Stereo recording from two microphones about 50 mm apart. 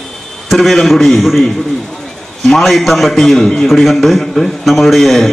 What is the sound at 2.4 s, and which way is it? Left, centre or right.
A man's voice, centre.